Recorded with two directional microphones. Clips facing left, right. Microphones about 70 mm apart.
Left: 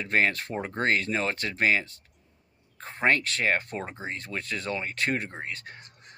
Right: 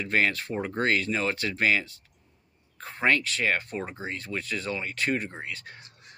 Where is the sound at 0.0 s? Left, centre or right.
Left.